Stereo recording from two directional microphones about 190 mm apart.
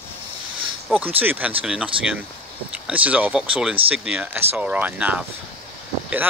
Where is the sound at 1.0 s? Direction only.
10° right (ahead or behind).